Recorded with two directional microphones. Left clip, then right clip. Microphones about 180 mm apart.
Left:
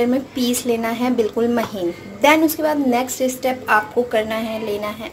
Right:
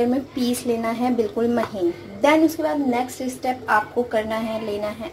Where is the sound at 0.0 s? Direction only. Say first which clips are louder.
Left 3 dB; centre (ahead or behind).